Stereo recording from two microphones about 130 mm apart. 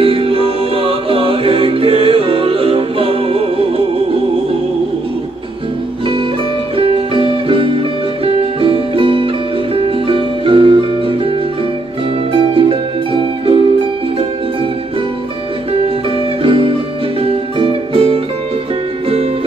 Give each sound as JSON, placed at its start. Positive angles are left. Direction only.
{"t": 0.0, "sound": "music", "side_deg": -45}
{"t": 6.8, "sound": "music", "side_deg": -45}
{"t": 16.4, "sound": "music", "side_deg": -45}